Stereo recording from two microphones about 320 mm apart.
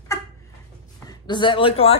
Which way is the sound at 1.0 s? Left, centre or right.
Centre.